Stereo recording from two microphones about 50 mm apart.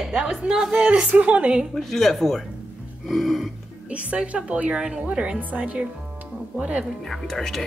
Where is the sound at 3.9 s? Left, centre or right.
Right.